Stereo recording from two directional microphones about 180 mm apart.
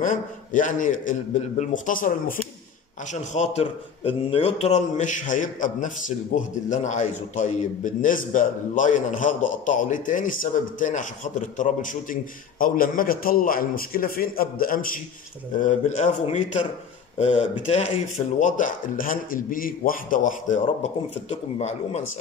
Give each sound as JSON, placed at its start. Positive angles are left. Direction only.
{"t": 0.0, "sound": "a man's voice", "side_deg": 45}
{"t": 3.1, "sound": "a man's voice", "side_deg": 35}
{"t": 18.4, "sound": "a man's voice", "side_deg": 45}